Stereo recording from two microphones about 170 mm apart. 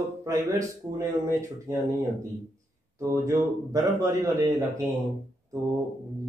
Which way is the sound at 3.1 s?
20° right (ahead or behind).